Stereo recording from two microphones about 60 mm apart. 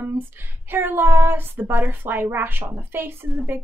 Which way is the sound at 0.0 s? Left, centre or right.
Right.